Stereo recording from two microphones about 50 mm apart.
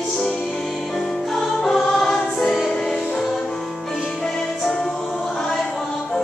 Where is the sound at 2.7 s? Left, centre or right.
Centre.